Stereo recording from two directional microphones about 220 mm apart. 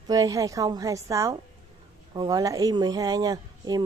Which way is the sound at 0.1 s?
15° right (ahead or behind).